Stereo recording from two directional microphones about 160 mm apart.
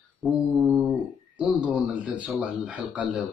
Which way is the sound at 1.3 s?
10° right (ahead or behind).